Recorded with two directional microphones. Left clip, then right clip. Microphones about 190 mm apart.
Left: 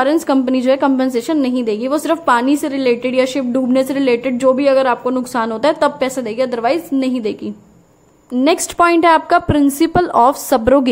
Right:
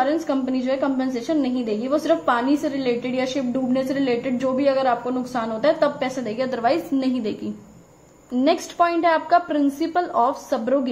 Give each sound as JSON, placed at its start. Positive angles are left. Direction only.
{"t": 0.0, "sound": "a woman's voice", "side_deg": 50}